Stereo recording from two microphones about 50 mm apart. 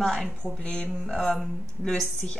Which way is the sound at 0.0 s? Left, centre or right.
Centre.